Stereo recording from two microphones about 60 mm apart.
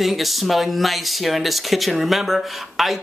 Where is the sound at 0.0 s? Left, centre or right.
Centre.